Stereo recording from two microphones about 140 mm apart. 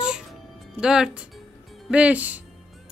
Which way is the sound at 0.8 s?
5° right (ahead or behind).